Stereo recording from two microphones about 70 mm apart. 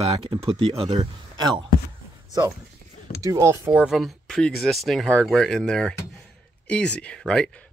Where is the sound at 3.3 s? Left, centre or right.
Right.